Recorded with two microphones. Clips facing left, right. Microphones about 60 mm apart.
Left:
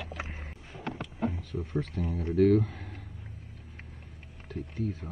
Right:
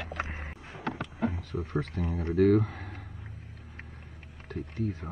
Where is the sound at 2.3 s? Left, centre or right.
Centre.